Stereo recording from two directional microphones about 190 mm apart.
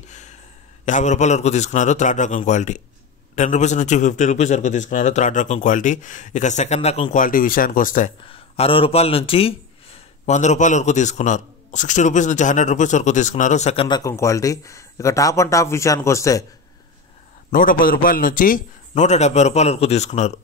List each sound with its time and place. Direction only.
0.1 s a sound: 40° left (ahead or behind)
0.8 s speech: 40° left (ahead or behind)
8.3 s speech: 30° left (ahead or behind)
13.8 s speech: 20° left (ahead or behind)
17.5 s speech: 45° left (ahead or behind)